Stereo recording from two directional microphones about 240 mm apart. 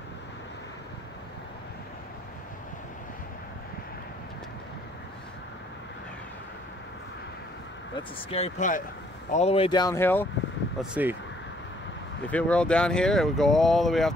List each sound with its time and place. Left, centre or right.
7.9 s speech: left
10.8 s speech: centre
12.3 s speech: centre